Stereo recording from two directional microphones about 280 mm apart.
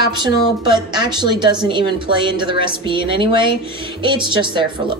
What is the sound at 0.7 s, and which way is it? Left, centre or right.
Speech, centre.